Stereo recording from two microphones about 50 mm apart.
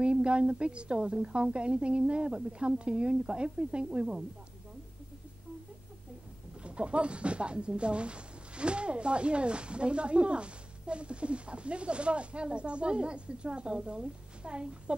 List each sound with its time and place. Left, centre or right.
0.0 s speech: right
6.6 s speech: right